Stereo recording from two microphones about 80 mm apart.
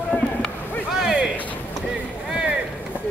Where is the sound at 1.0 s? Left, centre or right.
Centre.